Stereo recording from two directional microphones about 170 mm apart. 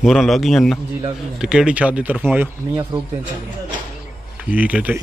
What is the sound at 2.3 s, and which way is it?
Speech, 20° right (ahead or behind).